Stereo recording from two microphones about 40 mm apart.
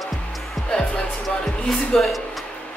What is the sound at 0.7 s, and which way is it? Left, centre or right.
Music, left.